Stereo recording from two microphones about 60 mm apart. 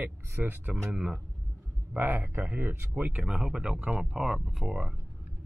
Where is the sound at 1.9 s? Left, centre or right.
Right.